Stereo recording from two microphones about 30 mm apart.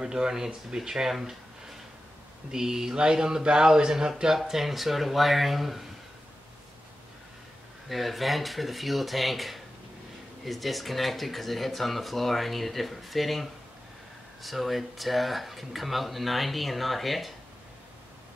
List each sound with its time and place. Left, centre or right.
0.0 s speech: right
2.5 s speech: centre
4.5 s speech: centre
7.9 s speech: centre